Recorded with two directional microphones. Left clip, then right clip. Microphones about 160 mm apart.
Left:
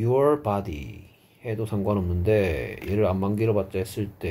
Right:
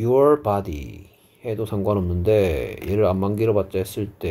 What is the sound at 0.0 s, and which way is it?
Speech, 40° right (ahead or behind).